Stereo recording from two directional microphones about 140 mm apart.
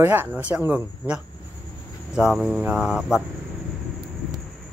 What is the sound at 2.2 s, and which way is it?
Cricket, 5° right (ahead or behind).